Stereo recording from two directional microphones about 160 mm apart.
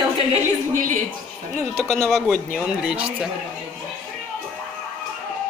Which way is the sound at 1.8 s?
Centre (ahead or behind).